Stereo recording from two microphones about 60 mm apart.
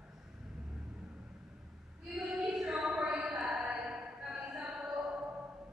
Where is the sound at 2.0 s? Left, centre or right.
Centre.